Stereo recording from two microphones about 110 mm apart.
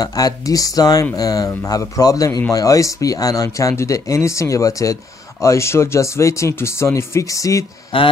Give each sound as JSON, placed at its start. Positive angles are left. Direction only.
{"t": 0.0, "sound": "speech", "side_deg": 35}